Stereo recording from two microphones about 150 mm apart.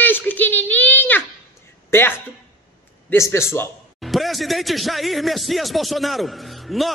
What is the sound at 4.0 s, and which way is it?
Speech, centre (ahead or behind).